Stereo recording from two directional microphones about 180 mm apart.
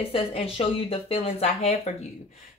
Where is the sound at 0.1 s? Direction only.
30° left (ahead or behind).